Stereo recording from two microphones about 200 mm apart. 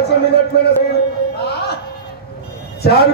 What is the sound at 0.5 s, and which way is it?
Speech, 55° left (ahead or behind).